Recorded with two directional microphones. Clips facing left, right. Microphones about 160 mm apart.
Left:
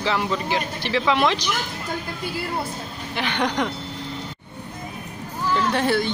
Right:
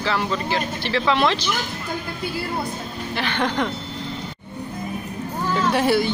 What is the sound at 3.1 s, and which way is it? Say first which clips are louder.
Speech: even; 15° left (ahead or behind).